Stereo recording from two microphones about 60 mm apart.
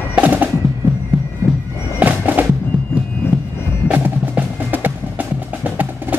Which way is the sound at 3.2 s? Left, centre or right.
Left.